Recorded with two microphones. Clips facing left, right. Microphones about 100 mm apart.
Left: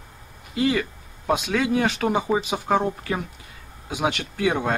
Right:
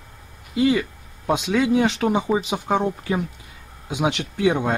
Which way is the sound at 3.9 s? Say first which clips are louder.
Right 2 dB; 20° right (ahead or behind).